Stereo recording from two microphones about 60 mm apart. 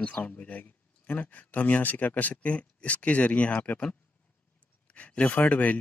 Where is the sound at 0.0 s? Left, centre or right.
Left.